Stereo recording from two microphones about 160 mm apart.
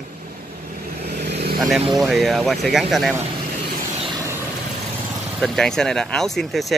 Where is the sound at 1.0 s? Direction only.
85° right.